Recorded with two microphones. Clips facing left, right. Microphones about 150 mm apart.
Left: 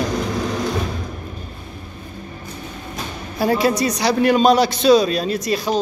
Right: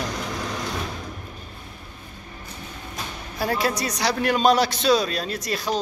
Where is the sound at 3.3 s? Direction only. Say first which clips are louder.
Left 7 dB; centre (ahead or behind).